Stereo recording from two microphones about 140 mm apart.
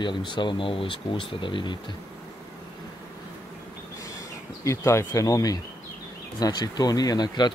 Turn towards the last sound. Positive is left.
turn(degrees=30)  # may be behind; listen again after turning